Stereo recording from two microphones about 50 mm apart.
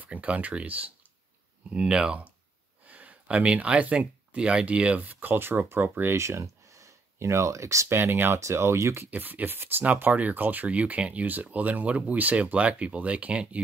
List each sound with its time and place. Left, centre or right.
0.0 s speech: right
1.7 s speech: centre
2.9 s speech: right
6.1 s speech: right
7.9 s speech: right
8.4 s speech: right
9.1 s speech: right